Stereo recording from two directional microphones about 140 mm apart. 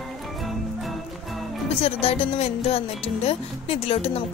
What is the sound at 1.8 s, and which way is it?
A woman's voice, 45° left (ahead or behind).